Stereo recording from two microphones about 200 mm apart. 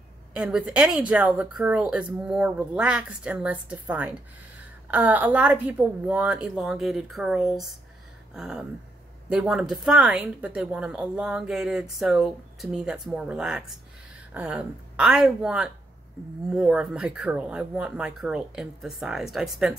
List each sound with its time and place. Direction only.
0.3 s a woman's voice: 5° right (ahead or behind)
8.3 s a sound: 5° right (ahead or behind)
9.3 s a woman's voice: 5° right (ahead or behind)